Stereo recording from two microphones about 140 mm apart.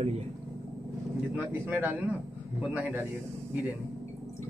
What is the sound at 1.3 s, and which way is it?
Speech, 10° right (ahead or behind).